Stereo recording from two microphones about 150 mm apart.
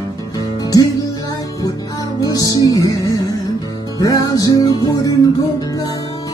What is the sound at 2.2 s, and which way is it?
Music, 25° left (ahead or behind).